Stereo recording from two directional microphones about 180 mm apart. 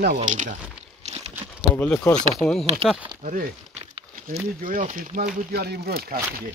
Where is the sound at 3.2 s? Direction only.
45° right (ahead or behind).